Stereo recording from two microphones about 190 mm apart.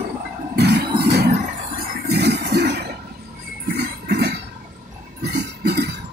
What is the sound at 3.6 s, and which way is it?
Music, 55° right (ahead or behind).